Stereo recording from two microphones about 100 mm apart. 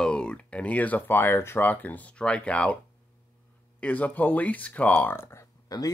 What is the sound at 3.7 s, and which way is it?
Speech, 15° left (ahead or behind).